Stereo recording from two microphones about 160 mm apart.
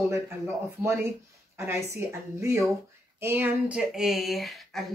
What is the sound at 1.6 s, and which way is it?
A woman's voice, 15° right (ahead or behind).